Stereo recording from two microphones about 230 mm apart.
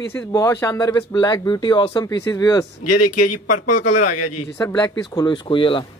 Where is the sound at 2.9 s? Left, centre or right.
Left.